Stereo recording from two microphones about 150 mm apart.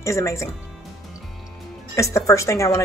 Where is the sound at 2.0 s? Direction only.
20° left (ahead or behind).